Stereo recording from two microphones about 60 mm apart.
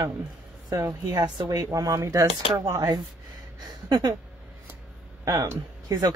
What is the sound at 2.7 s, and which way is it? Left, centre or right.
Speech, right.